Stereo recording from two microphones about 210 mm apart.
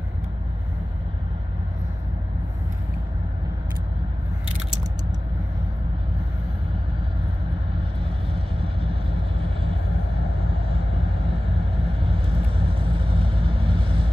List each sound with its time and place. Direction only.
8.3 s vehicle: 25° right (ahead or behind)
12.0 s vehicle: 25° right (ahead or behind)